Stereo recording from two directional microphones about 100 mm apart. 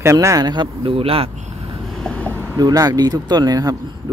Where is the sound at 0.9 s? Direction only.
70° right (ahead or behind).